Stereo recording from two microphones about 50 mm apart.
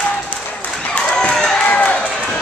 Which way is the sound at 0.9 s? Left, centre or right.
Centre.